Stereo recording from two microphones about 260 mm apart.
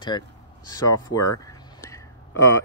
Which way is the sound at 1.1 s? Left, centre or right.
Left.